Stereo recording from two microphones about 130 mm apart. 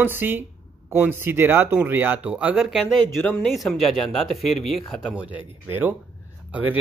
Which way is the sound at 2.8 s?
10° left (ahead or behind).